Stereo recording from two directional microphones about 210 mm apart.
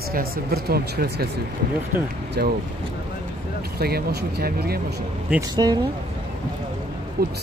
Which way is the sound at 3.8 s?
50° right (ahead or behind).